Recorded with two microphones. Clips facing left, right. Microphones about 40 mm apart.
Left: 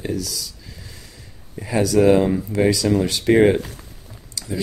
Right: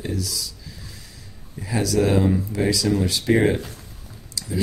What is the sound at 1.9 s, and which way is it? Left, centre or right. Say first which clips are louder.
Speech: left 4 dB; left.